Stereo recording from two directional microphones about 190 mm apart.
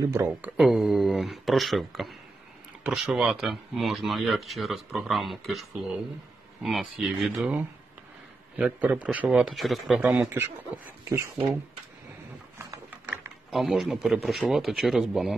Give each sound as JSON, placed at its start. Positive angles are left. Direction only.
{"t": 0.0, "sound": "a man's voice", "side_deg": -15}
{"t": 0.6, "sound": "a man's voice", "side_deg": 0}
{"t": 12.5, "sound": "mechanisms", "side_deg": -15}
{"t": 13.5, "sound": "speech", "side_deg": 0}